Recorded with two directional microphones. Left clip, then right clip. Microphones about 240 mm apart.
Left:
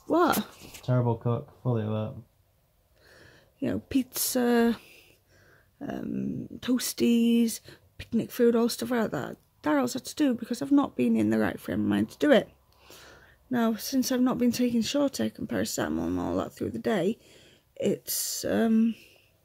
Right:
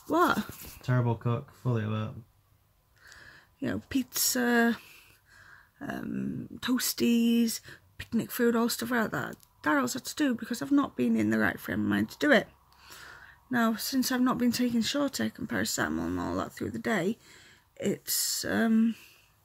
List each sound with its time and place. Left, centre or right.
0.1 s speech: centre
0.8 s speech: centre
3.1 s speech: centre